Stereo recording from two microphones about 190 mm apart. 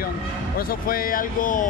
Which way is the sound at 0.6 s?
50° left (ahead or behind).